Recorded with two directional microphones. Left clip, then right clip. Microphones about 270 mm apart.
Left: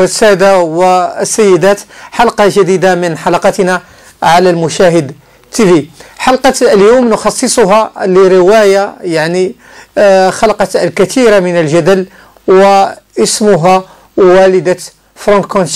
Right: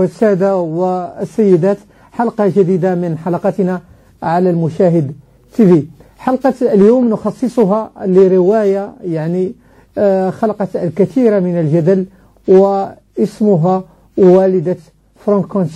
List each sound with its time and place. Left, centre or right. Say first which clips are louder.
0.0 s speech: left 7 dB; centre
4.6 s speech: left 6 dB; centre
9.9 s speech: left 8 dB; centre
12.6 s speech: left 9 dB; left